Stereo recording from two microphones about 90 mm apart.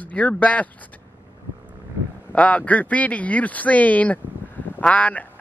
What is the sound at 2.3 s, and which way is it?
Speech, 15° left (ahead or behind).